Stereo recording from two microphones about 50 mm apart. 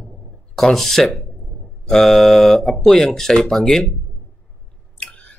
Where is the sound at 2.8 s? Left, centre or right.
Centre.